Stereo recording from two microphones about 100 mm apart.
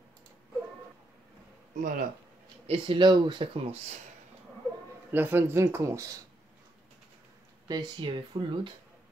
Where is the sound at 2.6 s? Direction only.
75° right (ahead or behind).